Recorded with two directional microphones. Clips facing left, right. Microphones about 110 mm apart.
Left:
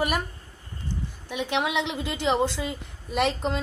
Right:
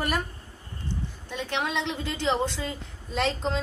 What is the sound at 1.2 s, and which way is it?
A woman's voice, 10° left (ahead or behind).